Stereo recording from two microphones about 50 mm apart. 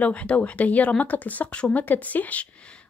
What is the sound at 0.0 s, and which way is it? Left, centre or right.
A woman's voice, left.